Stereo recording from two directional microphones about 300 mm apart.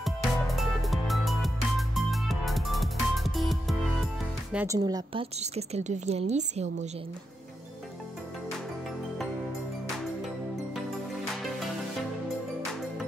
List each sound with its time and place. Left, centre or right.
0.0 s music: centre
4.5 s a woman's voice: centre